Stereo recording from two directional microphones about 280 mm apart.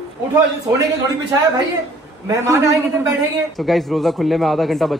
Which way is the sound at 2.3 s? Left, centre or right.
Centre.